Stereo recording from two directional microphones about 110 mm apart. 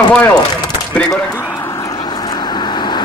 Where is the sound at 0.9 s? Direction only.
10° left (ahead or behind).